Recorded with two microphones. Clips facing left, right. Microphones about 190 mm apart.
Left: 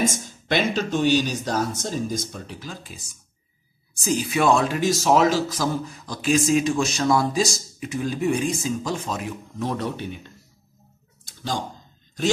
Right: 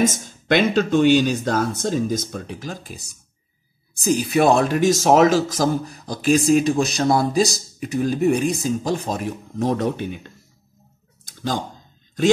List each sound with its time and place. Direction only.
0.6 s speech: 55° right (ahead or behind)
4.7 s speech: 50° right (ahead or behind)